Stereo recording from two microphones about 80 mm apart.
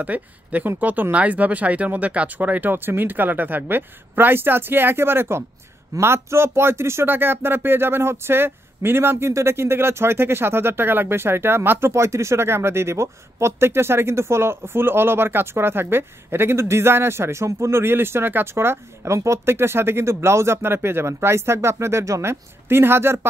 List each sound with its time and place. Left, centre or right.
0.0 s speech: centre